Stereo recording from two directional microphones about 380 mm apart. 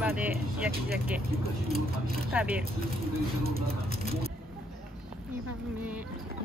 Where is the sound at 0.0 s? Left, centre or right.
Centre.